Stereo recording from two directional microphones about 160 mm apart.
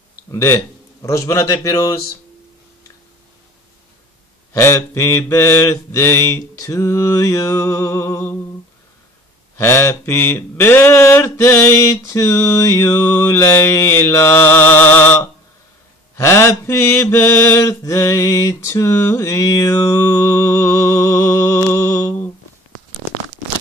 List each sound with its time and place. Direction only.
0.3 s mantra: 15° left (ahead or behind)
1.0 s a man's voice: 20° left (ahead or behind)
4.6 s mantra: 15° left (ahead or behind)
9.6 s mantra: 15° left (ahead or behind)
16.2 s mantra: 15° left (ahead or behind)